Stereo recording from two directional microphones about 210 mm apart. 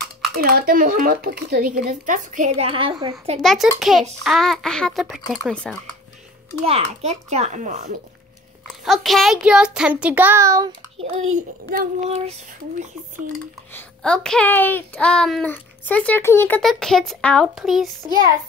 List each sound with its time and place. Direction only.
0.4 s speech: 45° right (ahead or behind); by 3.2 s 20° right (ahead or behind)
3.3 s speech: centre (ahead or behind)
6.6 s speech: 30° right (ahead or behind)
8.8 s speech: centre (ahead or behind); by 10.7 s 15° right (ahead or behind)
11.0 s a child's voice: 30° right (ahead or behind)
13.7 s speech: 5° left (ahead or behind)